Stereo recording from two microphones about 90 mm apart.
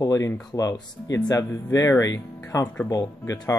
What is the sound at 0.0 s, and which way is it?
Speech, 40° left (ahead or behind).